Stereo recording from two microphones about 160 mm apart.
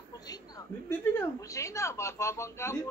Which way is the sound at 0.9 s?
15° left (ahead or behind).